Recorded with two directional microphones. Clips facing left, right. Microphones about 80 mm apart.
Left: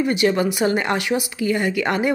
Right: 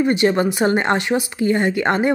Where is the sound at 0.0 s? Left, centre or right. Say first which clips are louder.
Right 2 dB; right.